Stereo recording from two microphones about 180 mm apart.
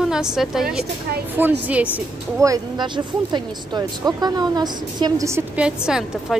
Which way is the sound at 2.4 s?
20° right (ahead or behind).